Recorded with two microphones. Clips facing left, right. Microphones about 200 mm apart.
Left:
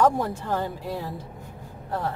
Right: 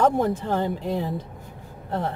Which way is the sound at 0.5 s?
20° right (ahead or behind).